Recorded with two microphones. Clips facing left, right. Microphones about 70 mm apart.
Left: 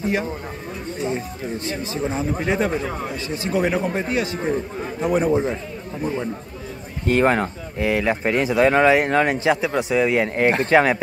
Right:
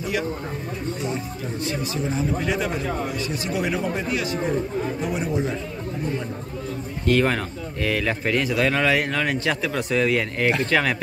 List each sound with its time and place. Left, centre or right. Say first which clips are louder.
1.0 s speech: left 3 dB; left
7.1 s speech: left 3 dB; left
9.5 s speech: left 4 dB; centre